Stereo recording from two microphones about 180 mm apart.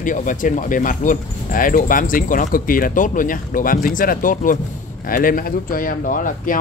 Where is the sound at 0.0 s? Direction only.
45° left (ahead or behind).